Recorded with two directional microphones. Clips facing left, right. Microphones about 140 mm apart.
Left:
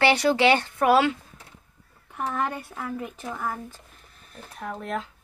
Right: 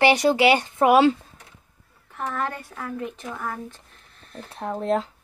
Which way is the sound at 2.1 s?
15° left (ahead or behind).